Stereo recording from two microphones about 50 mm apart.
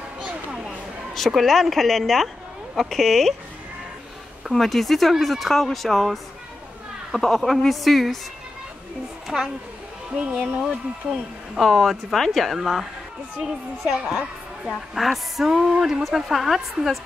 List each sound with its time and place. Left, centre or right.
0.2 s a sound: right
1.1 s a woman's voice: centre
4.5 s a woman's voice: centre
9.3 s a woman's voice: centre
10.1 s speech: right
11.6 s a woman's voice: centre